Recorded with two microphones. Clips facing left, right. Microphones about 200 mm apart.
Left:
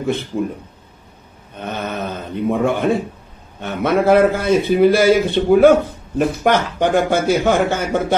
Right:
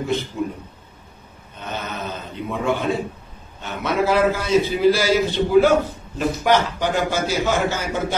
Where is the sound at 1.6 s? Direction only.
55° left (ahead or behind).